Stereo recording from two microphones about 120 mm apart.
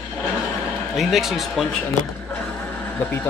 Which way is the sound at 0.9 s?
Centre (ahead or behind).